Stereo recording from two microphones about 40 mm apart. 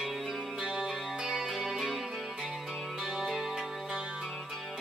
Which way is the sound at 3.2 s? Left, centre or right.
Centre.